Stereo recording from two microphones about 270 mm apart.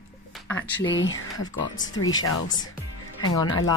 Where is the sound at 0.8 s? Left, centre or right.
Left.